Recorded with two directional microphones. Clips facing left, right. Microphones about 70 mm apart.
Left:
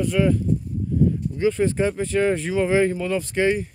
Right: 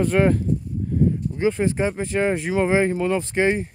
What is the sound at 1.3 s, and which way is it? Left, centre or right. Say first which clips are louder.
Speech: left 2 dB; right.